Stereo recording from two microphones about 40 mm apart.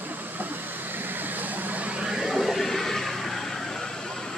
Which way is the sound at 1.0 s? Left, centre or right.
Right.